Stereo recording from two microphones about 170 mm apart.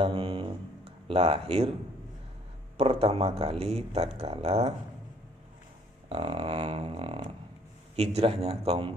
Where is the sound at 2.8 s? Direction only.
35° right (ahead or behind).